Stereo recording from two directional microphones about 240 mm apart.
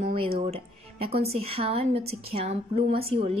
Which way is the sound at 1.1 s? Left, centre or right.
Right.